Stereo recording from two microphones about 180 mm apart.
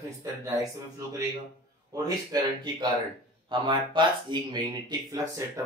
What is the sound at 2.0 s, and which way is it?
Speech, 20° right (ahead or behind).